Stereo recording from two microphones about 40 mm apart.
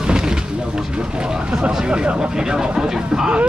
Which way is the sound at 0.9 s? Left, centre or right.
Centre.